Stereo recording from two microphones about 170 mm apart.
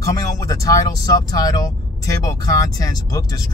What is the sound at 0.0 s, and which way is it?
Speech, 20° left (ahead or behind).